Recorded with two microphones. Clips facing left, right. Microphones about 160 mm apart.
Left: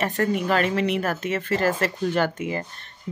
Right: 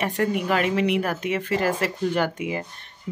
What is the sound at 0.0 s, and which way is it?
Speech, 10° right (ahead or behind).